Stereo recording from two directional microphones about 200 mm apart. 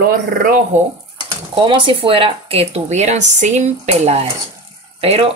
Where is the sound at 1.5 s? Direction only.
25° right (ahead or behind).